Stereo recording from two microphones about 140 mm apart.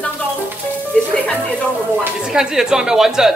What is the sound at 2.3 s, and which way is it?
Speech, 5° right (ahead or behind).